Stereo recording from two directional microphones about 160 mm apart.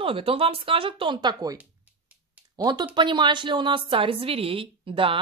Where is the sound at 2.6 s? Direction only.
25° right (ahead or behind).